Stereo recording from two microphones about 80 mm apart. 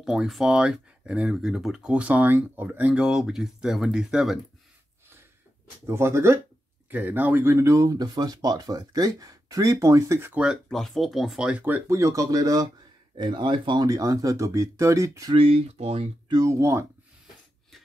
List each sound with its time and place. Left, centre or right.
0.0 s speech: centre
5.9 s speech: right
6.9 s speech: right
10.3 s speech: centre
10.7 s speech: centre
11.4 s speech: centre
11.9 s speech: right
13.1 s speech: right
13.8 s speech: right
16.4 s speech: right